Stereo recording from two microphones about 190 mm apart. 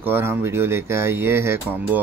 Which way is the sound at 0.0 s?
10° right (ahead or behind).